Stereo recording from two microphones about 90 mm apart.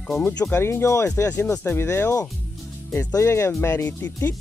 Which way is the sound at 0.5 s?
25° left (ahead or behind).